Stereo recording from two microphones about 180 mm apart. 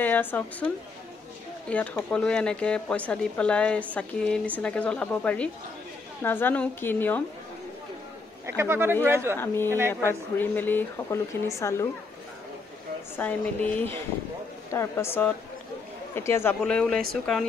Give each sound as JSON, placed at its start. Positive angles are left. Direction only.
{"t": 0.0, "sound": "speech", "side_deg": 10}
{"t": 1.7, "sound": "speech", "side_deg": 10}
{"t": 8.5, "sound": "speech", "side_deg": -15}
{"t": 10.0, "sound": "speech", "side_deg": 10}
{"t": 13.1, "sound": "speech", "side_deg": 10}
{"t": 14.7, "sound": "speech", "side_deg": 15}